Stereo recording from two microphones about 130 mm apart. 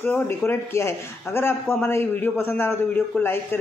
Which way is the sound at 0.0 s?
15° left (ahead or behind).